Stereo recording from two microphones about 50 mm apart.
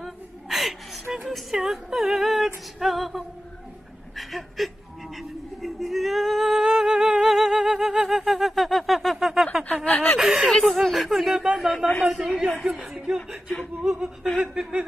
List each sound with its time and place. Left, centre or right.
0.0 s gasp: centre
1.2 s female singing: centre
4.2 s a sound: centre
9.8 s a sound: centre
10.1 s chuckle: centre
10.5 s a sound: centre
12.1 s female singing: centre
12.7 s speech: centre
14.5 s chuckle: right